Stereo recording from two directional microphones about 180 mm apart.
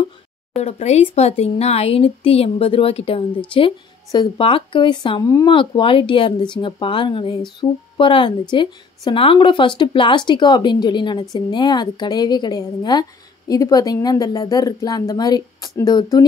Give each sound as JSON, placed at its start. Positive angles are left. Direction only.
{"t": 0.6, "sound": "speech", "side_deg": 35}